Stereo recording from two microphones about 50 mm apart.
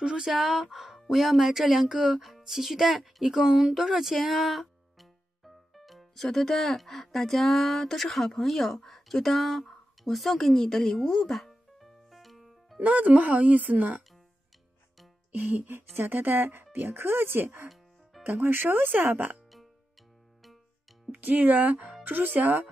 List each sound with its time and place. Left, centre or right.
0.2 s speech: centre
12.7 s speech: right
15.3 s speech: right
15.7 s speech: right
21.1 s speech: right